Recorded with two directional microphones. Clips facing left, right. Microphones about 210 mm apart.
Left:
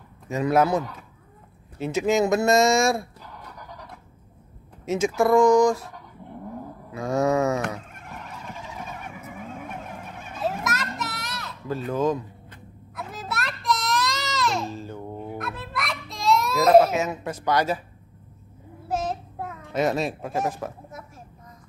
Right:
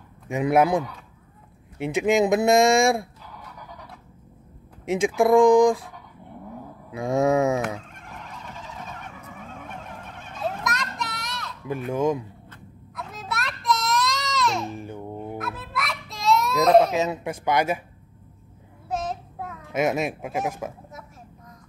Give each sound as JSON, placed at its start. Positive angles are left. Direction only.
{"t": 0.3, "sound": "speech", "side_deg": -15}
{"t": 3.5, "sound": "a sound", "side_deg": -5}
{"t": 4.8, "sound": "speech", "side_deg": -15}
{"t": 6.9, "sound": "speech", "side_deg": -15}
{"t": 7.6, "sound": "fowl", "side_deg": 0}
{"t": 11.9, "sound": "speech", "side_deg": -15}
{"t": 12.9, "sound": "a sound", "side_deg": 0}
{"t": 14.7, "sound": "babbling", "side_deg": -15}
{"t": 15.3, "sound": "a sound", "side_deg": 0}
{"t": 17.0, "sound": "speech", "side_deg": -15}
{"t": 18.9, "sound": "child singing", "side_deg": 0}
{"t": 19.8, "sound": "speech", "side_deg": -10}